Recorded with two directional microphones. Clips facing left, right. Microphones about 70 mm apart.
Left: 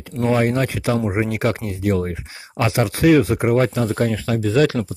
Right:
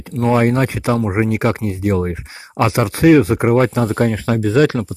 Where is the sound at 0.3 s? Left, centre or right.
Right.